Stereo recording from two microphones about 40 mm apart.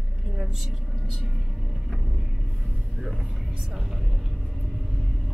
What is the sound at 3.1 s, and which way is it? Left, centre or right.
Speech, centre.